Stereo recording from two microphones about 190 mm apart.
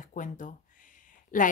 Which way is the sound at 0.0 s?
45° left (ahead or behind).